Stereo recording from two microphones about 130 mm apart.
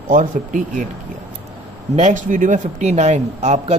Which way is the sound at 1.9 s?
75° right (ahead or behind).